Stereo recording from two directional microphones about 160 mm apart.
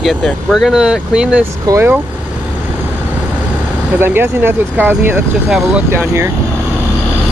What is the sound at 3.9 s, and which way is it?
Speech, 15° right (ahead or behind).